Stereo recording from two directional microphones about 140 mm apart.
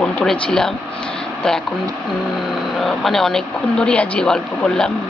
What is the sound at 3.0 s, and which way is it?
Speech, centre (ahead or behind).